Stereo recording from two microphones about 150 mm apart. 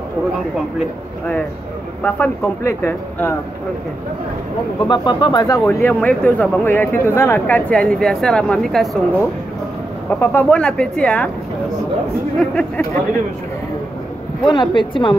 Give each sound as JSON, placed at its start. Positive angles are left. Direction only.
{"t": 2.0, "sound": "speech", "side_deg": 10}
{"t": 4.8, "sound": "speech", "side_deg": 30}
{"t": 12.4, "sound": "speech", "side_deg": 10}
{"t": 14.4, "sound": "speech", "side_deg": 30}